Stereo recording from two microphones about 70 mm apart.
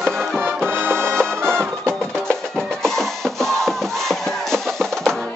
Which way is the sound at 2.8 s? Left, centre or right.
Centre.